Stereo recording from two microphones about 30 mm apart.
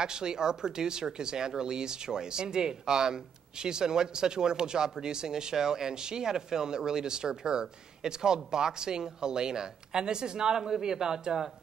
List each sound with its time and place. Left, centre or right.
0.0 s speech: right